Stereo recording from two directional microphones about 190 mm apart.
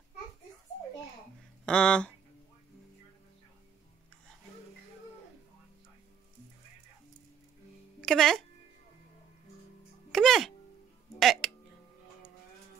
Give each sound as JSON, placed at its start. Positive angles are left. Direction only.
{"t": 1.7, "sound": "speech", "side_deg": 5}
{"t": 8.0, "sound": "speech", "side_deg": 0}
{"t": 10.1, "sound": "music", "side_deg": 0}